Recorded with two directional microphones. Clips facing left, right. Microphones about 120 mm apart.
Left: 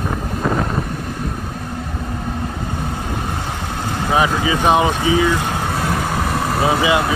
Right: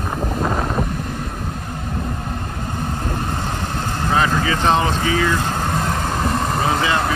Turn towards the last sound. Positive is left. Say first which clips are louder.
# left 3 dB
turn(degrees=10)  # may be behind; listen again after turning